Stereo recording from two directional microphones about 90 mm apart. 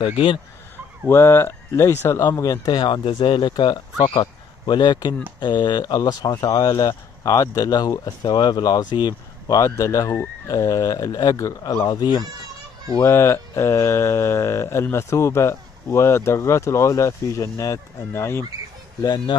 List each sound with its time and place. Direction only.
1.0 s speech: 25° left (ahead or behind)
2.3 s mantra: 40° left (ahead or behind)
2.8 s speech: 65° left (ahead or behind); by 6.5 s 45° left (ahead or behind)
6.6 s mantra: 40° left (ahead or behind)
8.2 s speech: 55° left (ahead or behind)
9.6 s mantra: 35° left (ahead or behind)
11.8 s speech: 50° left (ahead or behind)
13.0 s mantra: 30° left (ahead or behind)
18.1 s speech: 30° left (ahead or behind)
18.9 s speech: 50° left (ahead or behind)